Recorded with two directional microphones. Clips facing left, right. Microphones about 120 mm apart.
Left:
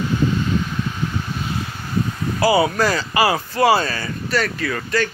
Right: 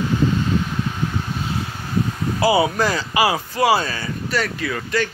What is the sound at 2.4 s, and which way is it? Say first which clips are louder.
Speech: left 1 dB; 20° right (ahead or behind).